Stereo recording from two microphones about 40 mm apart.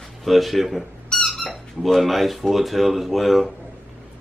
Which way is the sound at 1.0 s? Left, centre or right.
Centre.